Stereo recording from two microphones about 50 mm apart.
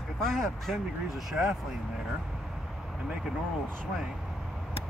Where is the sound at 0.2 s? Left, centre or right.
Centre.